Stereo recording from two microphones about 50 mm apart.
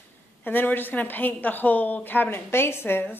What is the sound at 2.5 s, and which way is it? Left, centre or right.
Speech, left.